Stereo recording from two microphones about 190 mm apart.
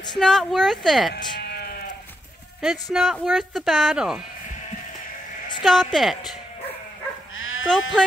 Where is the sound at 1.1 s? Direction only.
55° left (ahead or behind).